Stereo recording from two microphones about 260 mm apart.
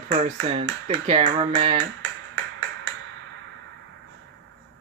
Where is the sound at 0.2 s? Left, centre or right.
Right.